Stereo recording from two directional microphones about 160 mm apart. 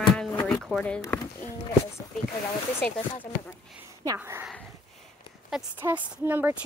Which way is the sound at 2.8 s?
10° left (ahead or behind).